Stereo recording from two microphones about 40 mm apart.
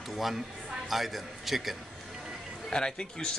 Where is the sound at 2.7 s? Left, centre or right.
Centre.